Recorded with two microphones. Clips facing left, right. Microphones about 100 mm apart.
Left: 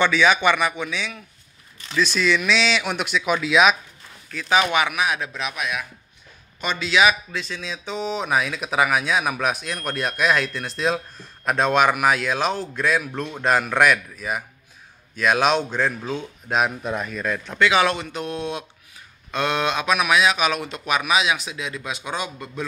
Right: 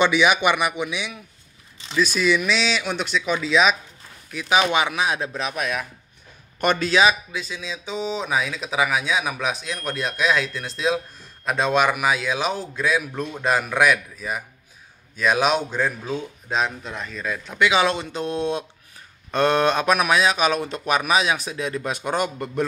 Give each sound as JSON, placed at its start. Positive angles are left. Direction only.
{"t": 0.0, "sound": "a man's voice", "side_deg": -15}
{"t": 4.3, "sound": "a man's voice", "side_deg": -15}
{"t": 4.6, "sound": "speech", "side_deg": -25}
{"t": 6.6, "sound": "speech", "side_deg": -55}
{"t": 6.9, "sound": "speech", "side_deg": -30}
{"t": 7.3, "sound": "speech", "side_deg": -5}
{"t": 16.5, "sound": "speech", "side_deg": 15}
{"t": 17.2, "sound": "speech", "side_deg": -5}
{"t": 17.6, "sound": "speech", "side_deg": -20}